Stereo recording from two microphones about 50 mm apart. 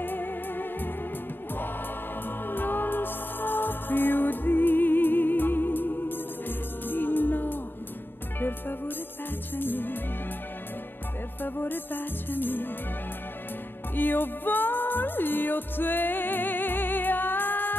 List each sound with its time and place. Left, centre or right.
0.0 s music: left
2.2 s music: left
11.4 s music: left
13.9 s music: left